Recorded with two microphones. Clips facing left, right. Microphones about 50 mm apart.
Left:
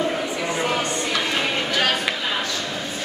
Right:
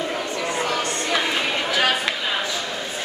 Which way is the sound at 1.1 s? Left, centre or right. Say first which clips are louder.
Right 2 dB; centre.